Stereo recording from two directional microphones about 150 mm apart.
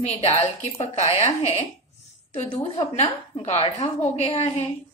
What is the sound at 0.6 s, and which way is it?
A woman's voice, 45° left (ahead or behind).